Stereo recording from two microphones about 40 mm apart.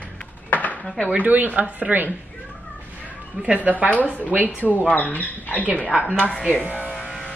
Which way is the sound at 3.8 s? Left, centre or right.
Left.